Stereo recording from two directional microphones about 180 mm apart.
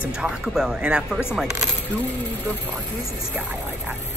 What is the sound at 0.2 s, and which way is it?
Speech, 5° right (ahead or behind).